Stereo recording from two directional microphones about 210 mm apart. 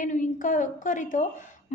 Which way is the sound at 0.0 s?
40° left (ahead or behind).